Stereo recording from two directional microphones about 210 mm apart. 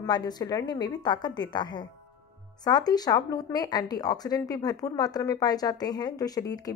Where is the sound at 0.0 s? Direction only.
20° left (ahead or behind).